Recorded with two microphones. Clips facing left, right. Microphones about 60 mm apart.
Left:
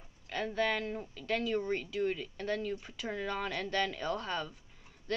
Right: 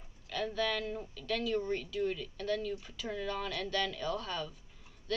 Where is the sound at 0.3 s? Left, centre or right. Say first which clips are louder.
Left 1 dB; left.